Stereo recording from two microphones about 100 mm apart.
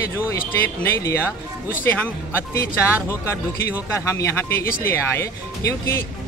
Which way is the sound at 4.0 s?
30° left (ahead or behind).